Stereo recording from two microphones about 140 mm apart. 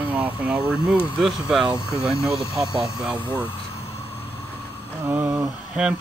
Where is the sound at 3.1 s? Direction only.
35° right (ahead or behind).